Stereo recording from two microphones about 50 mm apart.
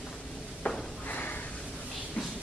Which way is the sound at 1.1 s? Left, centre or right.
Left.